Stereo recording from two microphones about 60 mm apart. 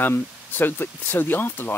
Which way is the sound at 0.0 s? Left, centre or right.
Left.